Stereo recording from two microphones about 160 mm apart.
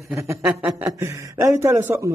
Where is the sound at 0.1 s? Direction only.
15° right (ahead or behind).